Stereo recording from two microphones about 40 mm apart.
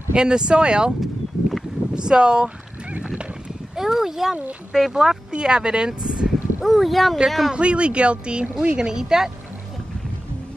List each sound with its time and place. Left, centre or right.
0.1 s speech: right
2.0 s speech: right
3.7 s speech: centre
5.3 s speech: right
6.6 s speech: centre
7.5 s speech: right